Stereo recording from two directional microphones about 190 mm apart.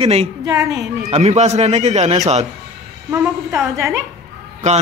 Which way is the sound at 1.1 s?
35° right (ahead or behind).